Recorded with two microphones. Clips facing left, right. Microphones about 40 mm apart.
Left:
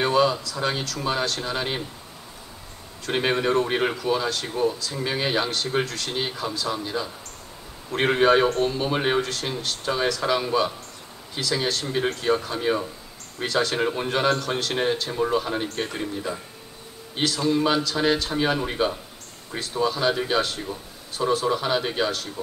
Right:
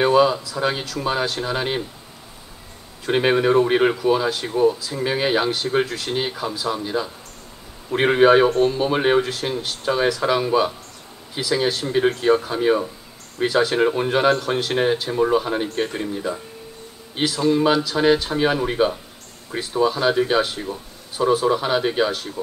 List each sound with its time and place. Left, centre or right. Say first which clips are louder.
0.0 s speech: right 4 dB; centre
3.1 s speech: right 5 dB; centre